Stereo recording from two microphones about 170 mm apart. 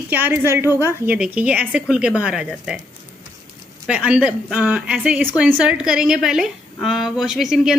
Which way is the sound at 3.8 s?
5° right (ahead or behind).